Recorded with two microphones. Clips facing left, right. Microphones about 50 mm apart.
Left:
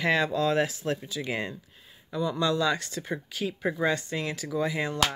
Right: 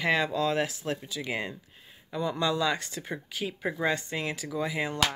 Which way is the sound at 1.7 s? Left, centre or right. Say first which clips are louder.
Left 2 dB; right.